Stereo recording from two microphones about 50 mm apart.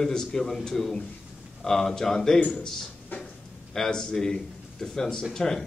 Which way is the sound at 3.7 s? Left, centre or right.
Centre.